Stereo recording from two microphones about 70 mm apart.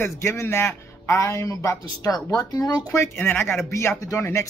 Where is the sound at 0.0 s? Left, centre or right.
Left.